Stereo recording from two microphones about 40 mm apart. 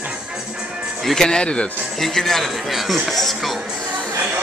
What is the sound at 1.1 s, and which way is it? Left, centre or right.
Speech, centre.